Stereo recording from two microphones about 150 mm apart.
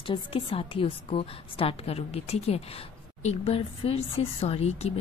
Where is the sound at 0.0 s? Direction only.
35° left (ahead or behind).